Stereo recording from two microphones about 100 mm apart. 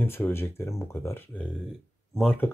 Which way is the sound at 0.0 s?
25° left (ahead or behind).